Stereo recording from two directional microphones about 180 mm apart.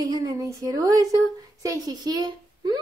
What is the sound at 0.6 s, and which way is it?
A woman's voice, 20° right (ahead or behind).